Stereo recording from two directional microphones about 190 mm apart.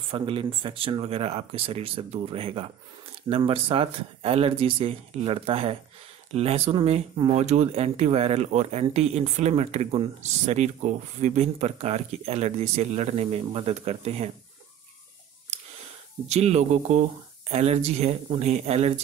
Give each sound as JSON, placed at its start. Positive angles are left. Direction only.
{"t": 0.1, "sound": "speech", "side_deg": -25}
{"t": 16.3, "sound": "speech", "side_deg": -35}